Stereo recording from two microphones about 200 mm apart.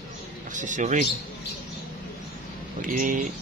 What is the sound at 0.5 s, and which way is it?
Speech, 40° right (ahead or behind).